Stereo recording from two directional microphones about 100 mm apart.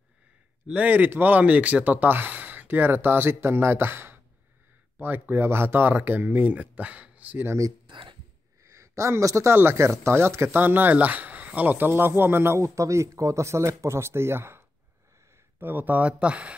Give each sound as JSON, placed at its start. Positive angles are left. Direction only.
{"t": 0.7, "sound": "speech", "side_deg": -15}
{"t": 7.8, "sound": "a sound", "side_deg": -55}
{"t": 8.6, "sound": "speech", "side_deg": -30}
{"t": 15.6, "sound": "speech", "side_deg": -20}